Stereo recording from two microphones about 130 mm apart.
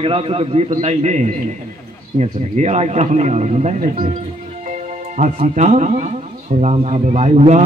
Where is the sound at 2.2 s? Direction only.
60° right (ahead or behind).